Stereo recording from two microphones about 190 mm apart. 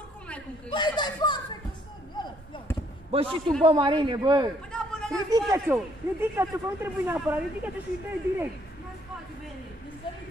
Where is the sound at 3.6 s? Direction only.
25° right (ahead or behind).